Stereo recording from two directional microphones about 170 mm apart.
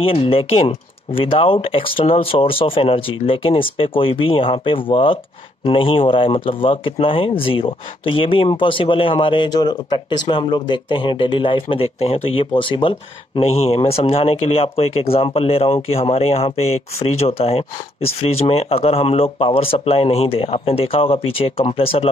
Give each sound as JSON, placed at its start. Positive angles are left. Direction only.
{"t": 0.0, "sound": "speech", "side_deg": 35}